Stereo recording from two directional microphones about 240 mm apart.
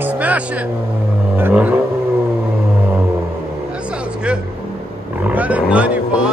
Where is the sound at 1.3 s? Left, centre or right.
Centre.